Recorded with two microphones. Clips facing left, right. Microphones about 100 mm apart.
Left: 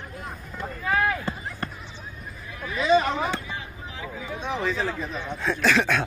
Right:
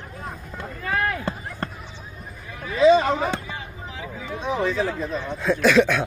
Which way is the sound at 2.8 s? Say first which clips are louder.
Right 5 dB; 30° right (ahead or behind).